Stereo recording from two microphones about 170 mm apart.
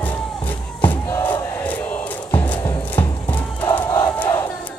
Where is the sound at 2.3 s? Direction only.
10° left (ahead or behind).